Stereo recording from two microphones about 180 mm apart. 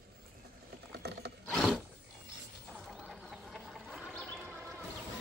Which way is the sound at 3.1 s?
Centre (ahead or behind).